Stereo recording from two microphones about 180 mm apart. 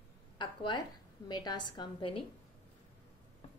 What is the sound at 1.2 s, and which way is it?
Speech, 25° left (ahead or behind).